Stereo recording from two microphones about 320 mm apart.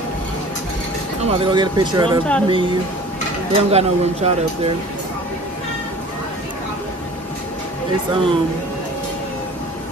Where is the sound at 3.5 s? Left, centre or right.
Centre.